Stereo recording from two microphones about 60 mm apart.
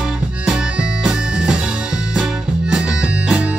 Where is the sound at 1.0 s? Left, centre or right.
Centre.